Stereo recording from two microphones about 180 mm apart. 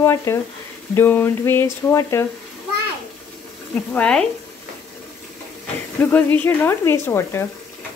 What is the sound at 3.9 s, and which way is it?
Speech, 5° left (ahead or behind).